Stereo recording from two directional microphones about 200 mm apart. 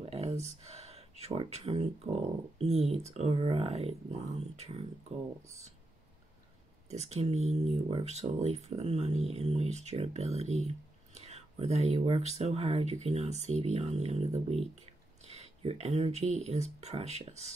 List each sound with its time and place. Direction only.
0.0 s a sound: 30° right (ahead or behind)
0.4 s speech: 30° right (ahead or behind)
6.9 s speech: 35° right (ahead or behind)